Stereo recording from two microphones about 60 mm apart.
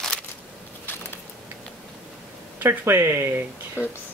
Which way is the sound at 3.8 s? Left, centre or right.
Left.